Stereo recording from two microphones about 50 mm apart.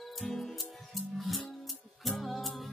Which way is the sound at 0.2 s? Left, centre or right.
Centre.